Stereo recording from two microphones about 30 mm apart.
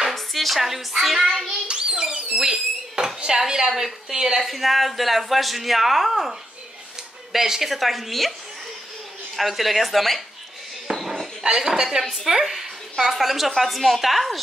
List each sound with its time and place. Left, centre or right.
0.1 s speech: centre
1.7 s a child's voice: right
2.4 s a sound: centre
3.4 s a woman's voice: centre
4.5 s speech: centre
7.3 s a woman's voice: centre
7.7 s speech: centre
9.4 s speech: centre
10.9 s a sound: right
11.4 s a woman's voice: right; by 14.4 s centre